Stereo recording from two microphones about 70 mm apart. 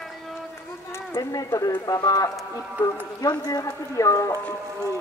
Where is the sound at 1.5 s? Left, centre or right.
Left.